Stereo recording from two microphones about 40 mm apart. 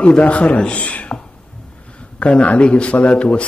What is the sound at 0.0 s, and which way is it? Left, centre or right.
A man's voice, left.